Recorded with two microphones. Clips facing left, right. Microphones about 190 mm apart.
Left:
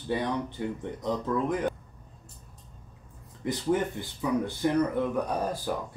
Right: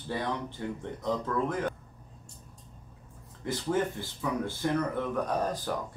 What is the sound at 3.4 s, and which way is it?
Speech, 15° left (ahead or behind).